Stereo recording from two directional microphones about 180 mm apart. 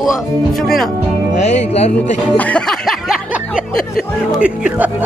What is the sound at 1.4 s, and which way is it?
Music, 35° left (ahead or behind).